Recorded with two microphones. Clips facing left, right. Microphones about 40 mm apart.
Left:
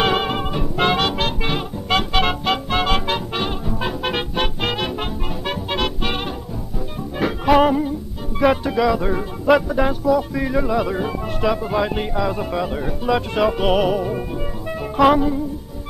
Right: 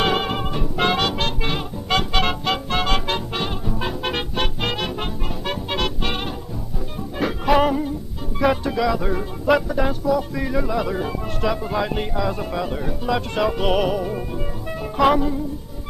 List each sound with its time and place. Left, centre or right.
0.0 s music: centre
8.4 s speech: centre